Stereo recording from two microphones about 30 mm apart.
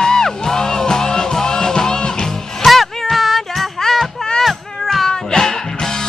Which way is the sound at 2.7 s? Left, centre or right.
Centre.